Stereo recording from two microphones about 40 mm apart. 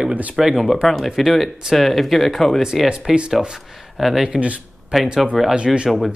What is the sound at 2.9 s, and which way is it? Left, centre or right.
Speech, right.